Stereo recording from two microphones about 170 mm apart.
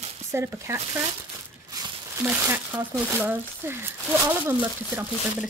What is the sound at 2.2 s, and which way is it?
Speech, 10° right (ahead or behind).